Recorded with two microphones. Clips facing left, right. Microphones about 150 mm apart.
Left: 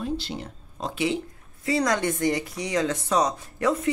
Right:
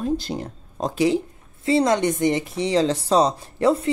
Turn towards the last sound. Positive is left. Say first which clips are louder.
# right 5 dB
turn(degrees=-30)  # may be behind; listen again after turning